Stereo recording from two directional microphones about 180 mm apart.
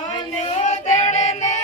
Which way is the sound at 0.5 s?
35° left (ahead or behind).